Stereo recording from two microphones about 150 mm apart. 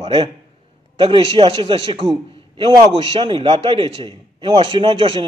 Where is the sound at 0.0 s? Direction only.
35° right (ahead or behind).